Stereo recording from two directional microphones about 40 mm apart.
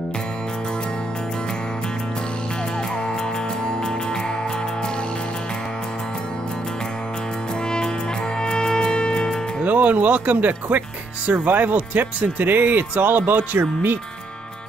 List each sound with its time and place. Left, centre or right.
8.4 s music: centre
9.7 s speech: right